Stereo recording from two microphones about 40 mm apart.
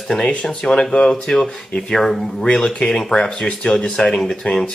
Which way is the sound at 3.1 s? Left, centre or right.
Left.